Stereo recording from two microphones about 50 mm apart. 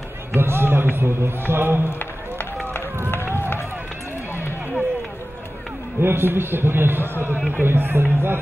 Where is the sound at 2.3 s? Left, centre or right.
Left.